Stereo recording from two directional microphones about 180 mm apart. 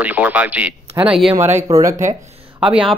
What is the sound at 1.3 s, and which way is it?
Speech, 15° right (ahead or behind).